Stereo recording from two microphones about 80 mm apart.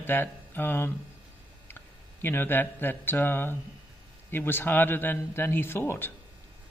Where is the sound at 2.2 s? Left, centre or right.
Left.